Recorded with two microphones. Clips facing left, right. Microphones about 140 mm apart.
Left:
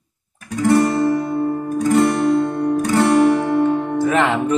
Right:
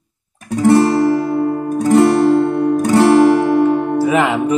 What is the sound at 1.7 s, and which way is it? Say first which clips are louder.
Music: right 4 dB; 35° right (ahead or behind).